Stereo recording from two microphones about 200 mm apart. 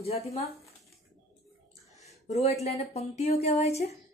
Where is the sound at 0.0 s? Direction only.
30° left (ahead or behind).